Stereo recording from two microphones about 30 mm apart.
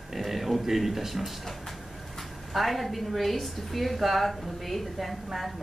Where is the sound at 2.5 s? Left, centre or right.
Centre.